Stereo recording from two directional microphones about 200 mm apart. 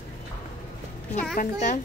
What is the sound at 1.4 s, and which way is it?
Speech, 45° left (ahead or behind).